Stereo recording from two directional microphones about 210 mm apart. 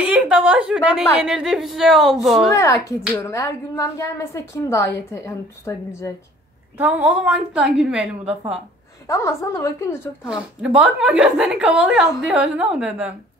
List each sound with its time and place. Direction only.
0.0 s a woman's voice: 5° right (ahead or behind)
2.5 s a woman's voice: 15° left (ahead or behind)
6.8 s a woman's voice: 5° right (ahead or behind)
9.0 s a woman's voice: 15° left (ahead or behind)
10.2 s a woman's voice: 5° right (ahead or behind)